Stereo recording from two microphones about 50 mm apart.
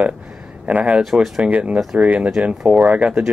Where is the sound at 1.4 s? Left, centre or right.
Right.